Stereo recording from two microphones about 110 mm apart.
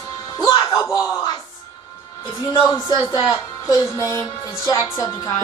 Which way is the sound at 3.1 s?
35° left (ahead or behind).